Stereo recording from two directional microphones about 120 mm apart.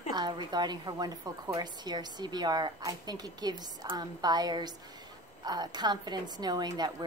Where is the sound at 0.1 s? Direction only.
35° right (ahead or behind).